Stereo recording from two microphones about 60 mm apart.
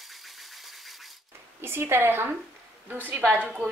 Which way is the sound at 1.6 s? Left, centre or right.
Right.